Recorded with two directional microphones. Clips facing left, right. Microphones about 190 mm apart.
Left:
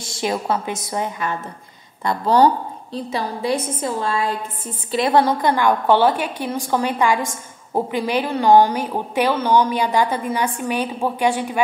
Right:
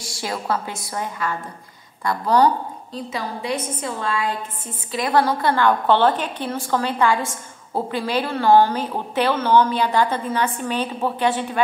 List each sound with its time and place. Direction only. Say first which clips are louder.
0.0 s a woman's voice: left 5 dB; 20° left (ahead or behind)